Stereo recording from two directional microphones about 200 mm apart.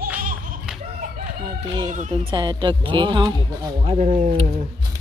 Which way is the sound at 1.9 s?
40° right (ahead or behind).